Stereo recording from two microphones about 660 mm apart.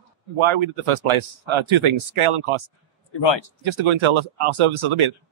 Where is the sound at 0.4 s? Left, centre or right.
Right.